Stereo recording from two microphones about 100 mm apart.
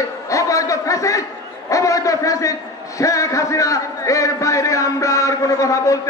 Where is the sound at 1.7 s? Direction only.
30° left (ahead or behind).